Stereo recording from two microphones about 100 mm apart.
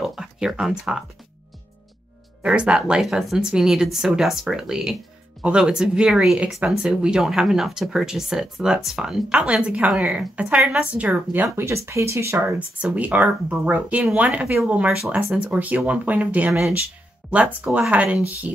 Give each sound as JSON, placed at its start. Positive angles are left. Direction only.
{"t": 0.0, "sound": "a sound", "side_deg": -5}
{"t": 2.4, "sound": "speech", "side_deg": -10}
{"t": 11.4, "sound": "speech", "side_deg": -30}